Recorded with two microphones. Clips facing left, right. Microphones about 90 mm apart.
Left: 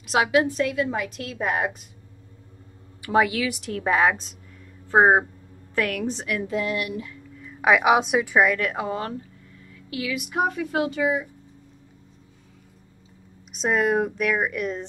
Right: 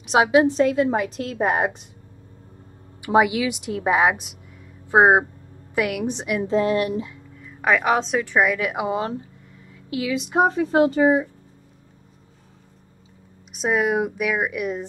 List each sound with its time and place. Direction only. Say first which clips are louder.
0.0 s a woman's voice: right 4 dB; 25° right (ahead or behind)
3.0 s a woman's voice: right 3 dB; 15° right (ahead or behind); by 7.1 s 35° right (ahead or behind)
7.4 s a woman's voice: left 1 dB; 5° left (ahead or behind)
8.4 s a woman's voice: right 1 dB; 5° right (ahead or behind); by 11.2 s 35° right (ahead or behind)
13.5 s speech: right 1 dB; 5° right (ahead or behind)